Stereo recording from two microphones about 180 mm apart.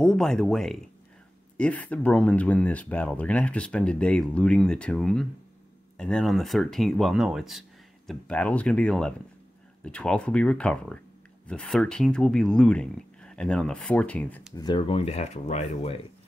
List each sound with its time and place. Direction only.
0.0 s speech: centre (ahead or behind)
14.5 s speech: 25° left (ahead or behind)